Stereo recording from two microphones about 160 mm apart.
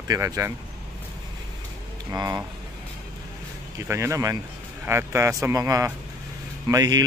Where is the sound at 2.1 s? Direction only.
15° right (ahead or behind).